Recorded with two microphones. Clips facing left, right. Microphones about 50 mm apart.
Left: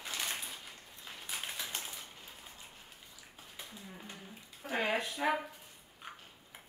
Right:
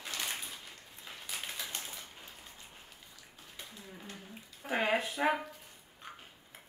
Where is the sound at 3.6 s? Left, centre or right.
Centre.